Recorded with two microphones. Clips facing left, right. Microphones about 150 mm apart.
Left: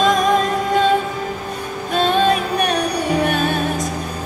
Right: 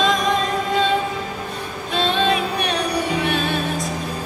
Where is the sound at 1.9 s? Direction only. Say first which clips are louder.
Left 4 dB; 45° left (ahead or behind).